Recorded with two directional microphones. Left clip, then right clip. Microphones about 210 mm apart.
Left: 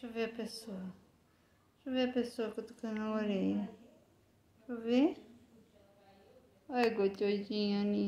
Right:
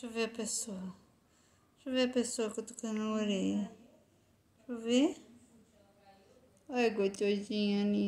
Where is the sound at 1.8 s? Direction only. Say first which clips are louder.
Right 2 dB; 45° right (ahead or behind).